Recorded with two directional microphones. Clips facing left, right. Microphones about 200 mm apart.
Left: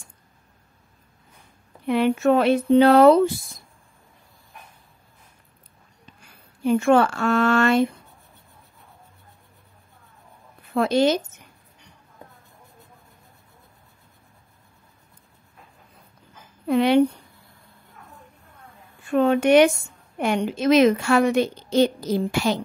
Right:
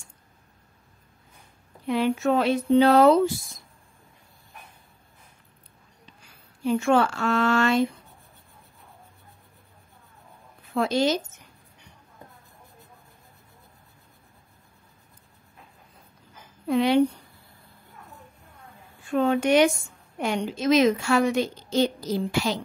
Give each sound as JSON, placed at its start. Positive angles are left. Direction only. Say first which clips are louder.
{"t": 1.9, "sound": "a woman's voice", "louder": "left 4 dB", "side_deg": 60}
{"t": 6.6, "sound": "a woman's voice", "louder": "left 4 dB", "side_deg": 55}
{"t": 10.7, "sound": "a woman's voice", "louder": "left 4 dB", "side_deg": 60}
{"t": 16.6, "sound": "a woman's voice", "louder": "left 3 dB", "side_deg": 60}
{"t": 19.1, "sound": "a woman's voice", "louder": "left 4 dB", "side_deg": 60}